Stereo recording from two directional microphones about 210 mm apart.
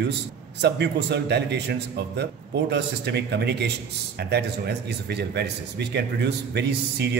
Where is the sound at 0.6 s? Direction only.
55° right (ahead or behind).